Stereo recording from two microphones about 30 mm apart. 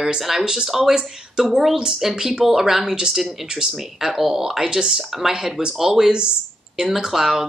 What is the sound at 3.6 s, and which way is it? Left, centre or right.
Speech, right.